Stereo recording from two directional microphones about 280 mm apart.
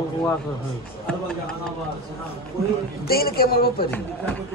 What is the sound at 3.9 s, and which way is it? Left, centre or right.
Speech, centre.